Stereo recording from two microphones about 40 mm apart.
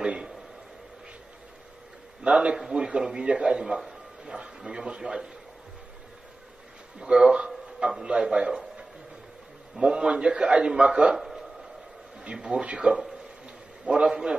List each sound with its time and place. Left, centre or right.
0.0 s a sound: right
2.3 s a man's voice: right
4.8 s a man's voice: right
7.0 s a man's voice: centre
9.8 s a man's voice: right
12.4 s a man's voice: right